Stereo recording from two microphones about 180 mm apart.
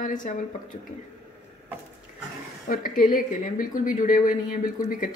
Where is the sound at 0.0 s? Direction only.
45° left (ahead or behind).